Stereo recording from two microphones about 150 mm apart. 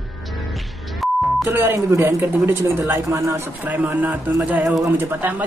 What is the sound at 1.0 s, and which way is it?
Beep, centre (ahead or behind).